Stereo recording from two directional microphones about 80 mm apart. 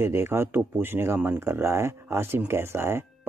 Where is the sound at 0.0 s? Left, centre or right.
Right.